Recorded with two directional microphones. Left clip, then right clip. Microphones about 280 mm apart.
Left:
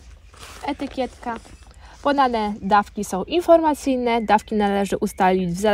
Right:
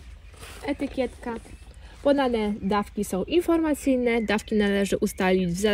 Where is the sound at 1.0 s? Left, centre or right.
Left.